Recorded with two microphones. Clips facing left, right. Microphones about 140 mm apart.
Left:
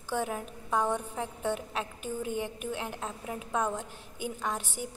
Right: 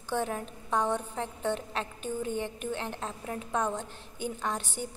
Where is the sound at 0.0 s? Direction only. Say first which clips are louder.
Right 1 dB; 10° left (ahead or behind).